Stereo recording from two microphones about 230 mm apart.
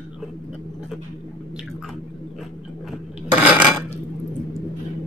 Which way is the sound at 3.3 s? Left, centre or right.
Centre.